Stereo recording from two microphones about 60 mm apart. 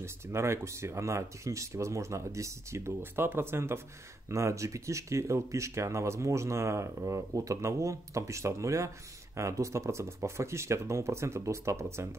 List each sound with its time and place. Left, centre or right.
0.0 s speech: right
4.3 s speech: right